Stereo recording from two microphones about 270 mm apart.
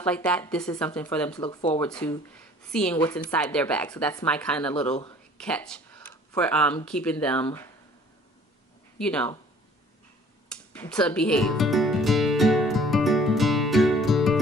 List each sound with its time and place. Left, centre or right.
0.0 s a woman's voice: centre
1.4 s speech: centre
2.0 s speech: centre
3.0 s a woman's voice: centre
3.3 s a woman's voice: centre
8.9 s speech: centre
10.5 s music: centre